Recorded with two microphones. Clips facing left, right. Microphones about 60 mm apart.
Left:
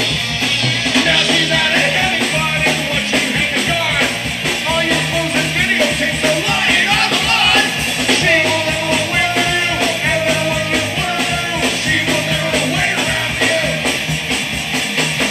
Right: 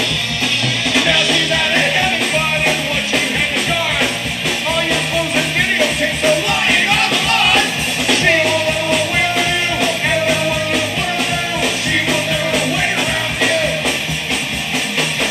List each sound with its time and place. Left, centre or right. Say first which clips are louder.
1.3 s music: left 1 dB; centre
5.3 s music: even; centre